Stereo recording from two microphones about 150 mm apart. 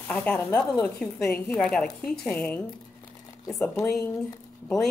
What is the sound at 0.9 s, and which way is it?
A woman's voice, 5° left (ahead or behind).